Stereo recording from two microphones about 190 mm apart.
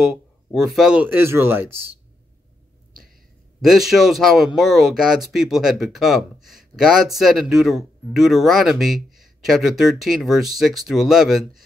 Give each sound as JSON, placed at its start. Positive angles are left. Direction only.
{"t": 0.0, "sound": "speech", "side_deg": -5}
{"t": 3.6, "sound": "speech", "side_deg": 0}